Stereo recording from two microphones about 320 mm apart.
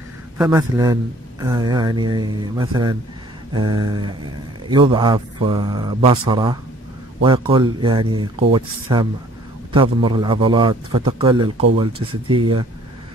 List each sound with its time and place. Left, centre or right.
0.4 s speech: centre